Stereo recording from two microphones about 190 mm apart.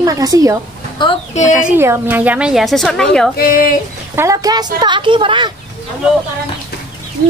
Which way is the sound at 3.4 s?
50° left (ahead or behind).